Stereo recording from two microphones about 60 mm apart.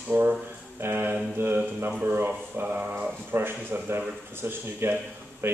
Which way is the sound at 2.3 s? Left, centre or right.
Right.